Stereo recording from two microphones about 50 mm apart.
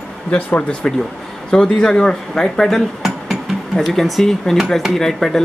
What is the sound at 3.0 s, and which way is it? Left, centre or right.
Music, centre.